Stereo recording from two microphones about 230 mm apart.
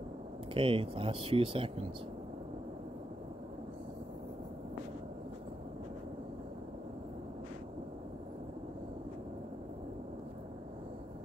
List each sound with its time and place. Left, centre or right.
0.6 s speech: right